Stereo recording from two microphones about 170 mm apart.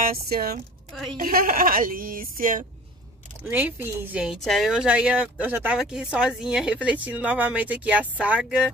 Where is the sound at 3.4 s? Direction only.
10° right (ahead or behind).